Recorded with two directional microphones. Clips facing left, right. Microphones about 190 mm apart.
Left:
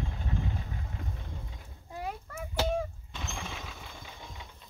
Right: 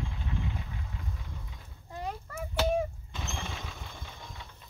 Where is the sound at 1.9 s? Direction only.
5° left (ahead or behind).